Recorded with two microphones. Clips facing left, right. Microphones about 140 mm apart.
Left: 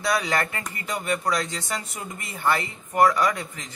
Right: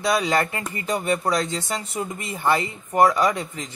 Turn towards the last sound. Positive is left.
turn(degrees=-25)  # may be behind; listen again after turning